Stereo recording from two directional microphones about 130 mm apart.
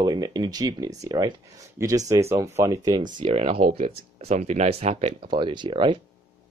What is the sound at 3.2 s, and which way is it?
Speech, 50° right (ahead or behind).